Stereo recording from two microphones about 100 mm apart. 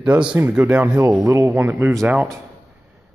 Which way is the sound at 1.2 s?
30° right (ahead or behind).